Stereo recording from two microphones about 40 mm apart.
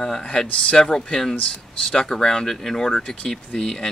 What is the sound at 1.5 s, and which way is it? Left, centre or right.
Speech, left.